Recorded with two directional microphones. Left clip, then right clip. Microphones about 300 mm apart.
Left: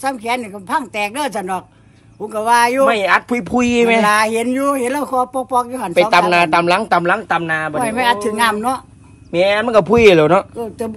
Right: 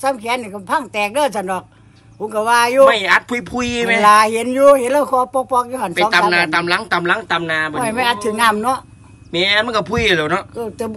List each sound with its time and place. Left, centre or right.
0.0 s speech: centre